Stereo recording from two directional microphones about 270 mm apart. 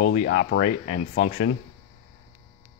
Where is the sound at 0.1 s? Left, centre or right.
Left.